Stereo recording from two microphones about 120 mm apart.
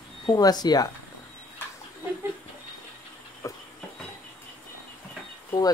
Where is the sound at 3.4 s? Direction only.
25° left (ahead or behind).